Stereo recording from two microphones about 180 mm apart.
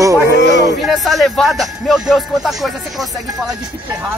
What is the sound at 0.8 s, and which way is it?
Speech, centre (ahead or behind).